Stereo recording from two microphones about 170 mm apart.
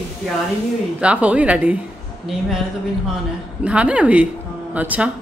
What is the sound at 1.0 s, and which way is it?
Speech, 5° right (ahead or behind).